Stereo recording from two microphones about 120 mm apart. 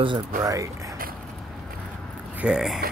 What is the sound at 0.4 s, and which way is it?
Speech, 25° right (ahead or behind).